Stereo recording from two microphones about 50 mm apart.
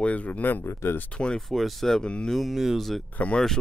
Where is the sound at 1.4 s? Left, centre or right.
Centre.